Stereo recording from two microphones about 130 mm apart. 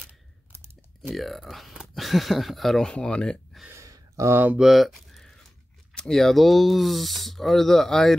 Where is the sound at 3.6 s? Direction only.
25° right (ahead or behind).